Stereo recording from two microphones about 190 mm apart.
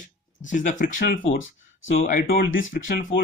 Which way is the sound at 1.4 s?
90° left.